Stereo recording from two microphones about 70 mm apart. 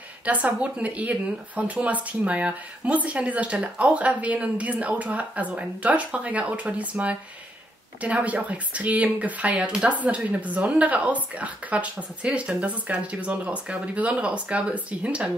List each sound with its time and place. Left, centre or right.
0.2 s speech: right